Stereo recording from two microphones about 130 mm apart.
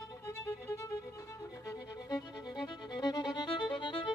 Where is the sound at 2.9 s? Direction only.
35° left (ahead or behind).